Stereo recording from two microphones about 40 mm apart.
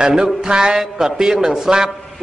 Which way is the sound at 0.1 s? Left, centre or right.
Centre.